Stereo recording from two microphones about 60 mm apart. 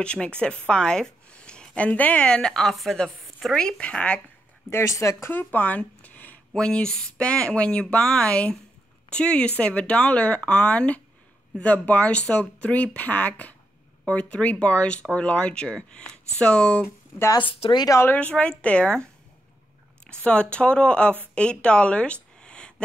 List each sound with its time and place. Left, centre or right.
0.0 s speech: centre
2.2 s speech: centre
4.6 s speech: left
5.2 s speech: left
6.5 s speech: centre
18.0 s speech: left
18.3 s speech: centre
20.1 s speech: centre
21.4 s a sound: centre